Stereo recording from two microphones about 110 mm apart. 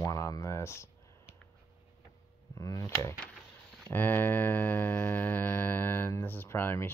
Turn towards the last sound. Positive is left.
turn(degrees=20)  # may be behind; listen again after turning